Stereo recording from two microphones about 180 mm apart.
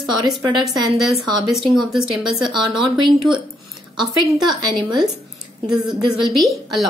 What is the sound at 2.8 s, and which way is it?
A woman's voice, 25° right (ahead or behind).